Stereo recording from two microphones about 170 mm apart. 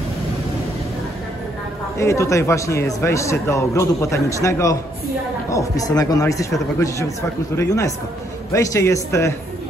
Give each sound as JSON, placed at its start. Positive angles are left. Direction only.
{"t": 2.0, "sound": "a man's voice", "side_deg": 15}